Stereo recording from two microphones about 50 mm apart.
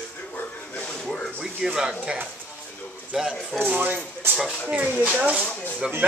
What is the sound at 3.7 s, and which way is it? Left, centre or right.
Speech, right.